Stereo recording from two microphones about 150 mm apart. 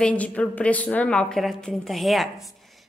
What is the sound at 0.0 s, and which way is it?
A woman's voice, 10° left (ahead or behind).